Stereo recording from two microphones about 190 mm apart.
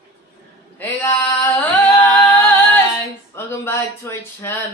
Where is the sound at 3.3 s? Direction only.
10° left (ahead or behind).